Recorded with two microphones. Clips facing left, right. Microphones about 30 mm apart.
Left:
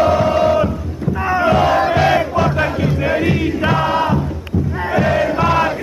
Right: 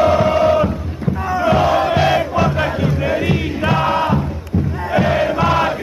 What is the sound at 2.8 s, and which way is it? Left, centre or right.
Crowd, centre.